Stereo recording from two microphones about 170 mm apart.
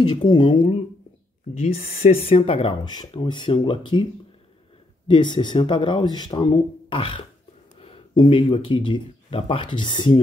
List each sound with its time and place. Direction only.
0.1 s speech: 30° left (ahead or behind)